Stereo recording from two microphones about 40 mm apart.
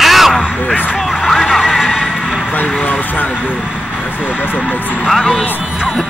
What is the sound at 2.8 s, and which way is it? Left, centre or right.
Vehicle, left.